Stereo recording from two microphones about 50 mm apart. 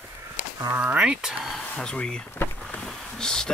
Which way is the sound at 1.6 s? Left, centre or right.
Centre.